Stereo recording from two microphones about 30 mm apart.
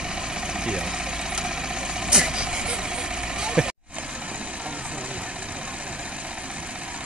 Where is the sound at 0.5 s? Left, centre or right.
Right.